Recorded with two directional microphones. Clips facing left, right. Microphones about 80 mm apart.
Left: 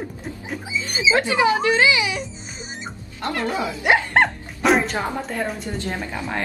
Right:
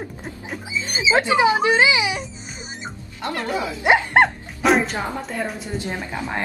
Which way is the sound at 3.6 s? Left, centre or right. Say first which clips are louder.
Right 2 dB; right.